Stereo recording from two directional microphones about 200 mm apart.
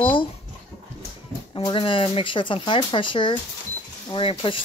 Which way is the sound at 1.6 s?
25° left (ahead or behind).